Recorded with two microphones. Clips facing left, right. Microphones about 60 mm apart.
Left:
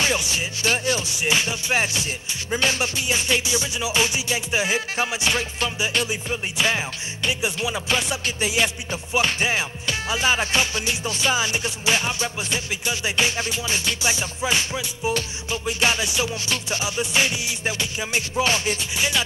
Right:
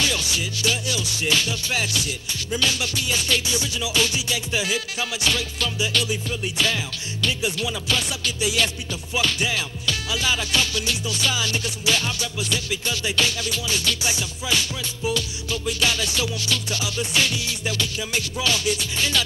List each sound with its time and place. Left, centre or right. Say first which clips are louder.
0.0 s music: left 2 dB; left
1.2 s music: even; left
18.9 s music: left 3 dB; centre